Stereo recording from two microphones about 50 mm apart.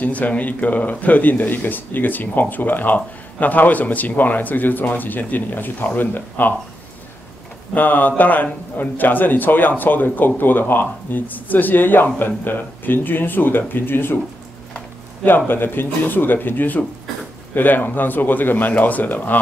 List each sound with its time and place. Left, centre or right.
0.0 s speech: left
7.7 s speech: left
15.2 s speech: left